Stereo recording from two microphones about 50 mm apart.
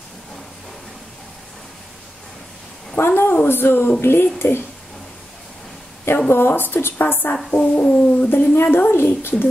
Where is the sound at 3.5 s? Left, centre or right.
Left.